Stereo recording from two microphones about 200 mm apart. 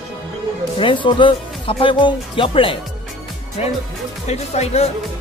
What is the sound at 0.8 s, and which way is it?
Speech, 25° left (ahead or behind).